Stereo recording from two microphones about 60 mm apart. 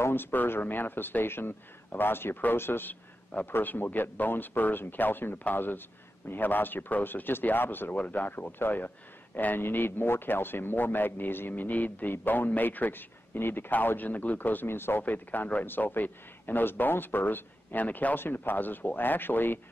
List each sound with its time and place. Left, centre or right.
0.0 s speech: left
7.9 s speech: left
15.0 s speech: left